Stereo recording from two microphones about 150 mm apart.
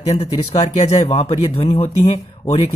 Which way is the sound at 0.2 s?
40° left (ahead or behind).